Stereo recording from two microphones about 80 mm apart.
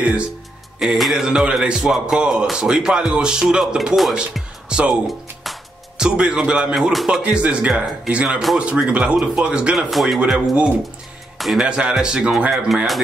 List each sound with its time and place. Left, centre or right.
0.0 s speech: centre
0.7 s a man's voice: centre
9.8 s speech: centre
11.3 s music: centre
11.6 s a man's voice: centre